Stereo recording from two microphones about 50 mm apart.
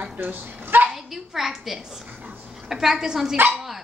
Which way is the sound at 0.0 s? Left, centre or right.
Right.